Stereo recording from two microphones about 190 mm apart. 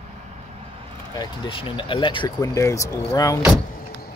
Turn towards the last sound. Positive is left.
turn(degrees=15)  # may be behind; listen again after turning